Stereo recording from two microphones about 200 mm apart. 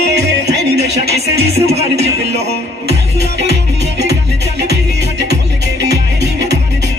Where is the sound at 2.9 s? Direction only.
55° right (ahead or behind).